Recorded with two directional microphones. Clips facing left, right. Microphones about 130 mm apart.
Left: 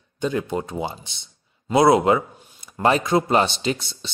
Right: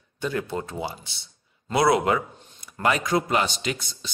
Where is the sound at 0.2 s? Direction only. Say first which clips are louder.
Left 4 dB; 20° left (ahead or behind).